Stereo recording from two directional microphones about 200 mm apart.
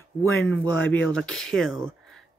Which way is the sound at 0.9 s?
5° left (ahead or behind).